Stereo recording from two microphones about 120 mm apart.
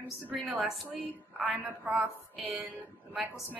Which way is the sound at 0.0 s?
10° right (ahead or behind).